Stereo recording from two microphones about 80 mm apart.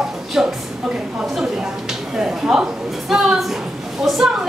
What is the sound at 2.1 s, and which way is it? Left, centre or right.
A woman's voice, centre.